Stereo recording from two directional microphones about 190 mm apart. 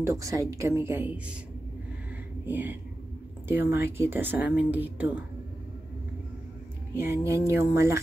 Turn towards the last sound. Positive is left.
turn(degrees=-15)  # may be behind; listen again after turning